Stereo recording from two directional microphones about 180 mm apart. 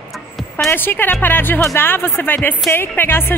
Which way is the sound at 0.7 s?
10° left (ahead or behind).